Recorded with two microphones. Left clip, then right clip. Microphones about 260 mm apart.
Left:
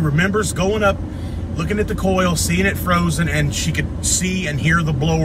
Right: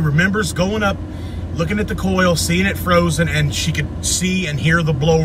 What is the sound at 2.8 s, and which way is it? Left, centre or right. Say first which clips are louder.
A man's voice: right 4 dB; centre.